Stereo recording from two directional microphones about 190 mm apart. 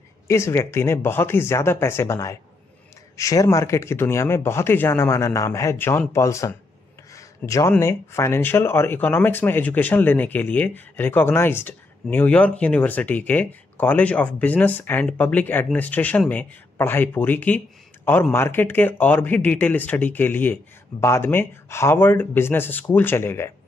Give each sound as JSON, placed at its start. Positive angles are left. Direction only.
{"t": 0.3, "sound": "speech", "side_deg": 15}
{"t": 7.2, "sound": "a sound", "side_deg": 15}
{"t": 7.7, "sound": "speech", "side_deg": 15}